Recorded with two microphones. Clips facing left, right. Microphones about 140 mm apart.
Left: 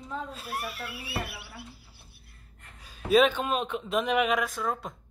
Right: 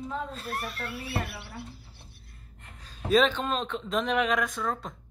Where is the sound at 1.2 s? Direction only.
5° left (ahead or behind).